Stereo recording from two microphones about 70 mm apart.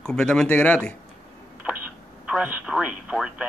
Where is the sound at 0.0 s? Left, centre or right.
Centre.